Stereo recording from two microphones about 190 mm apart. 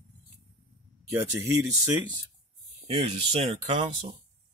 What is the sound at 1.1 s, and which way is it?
Speech, 20° right (ahead or behind).